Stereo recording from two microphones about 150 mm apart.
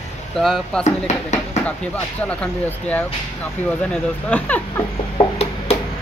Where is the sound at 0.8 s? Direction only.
50° left (ahead or behind).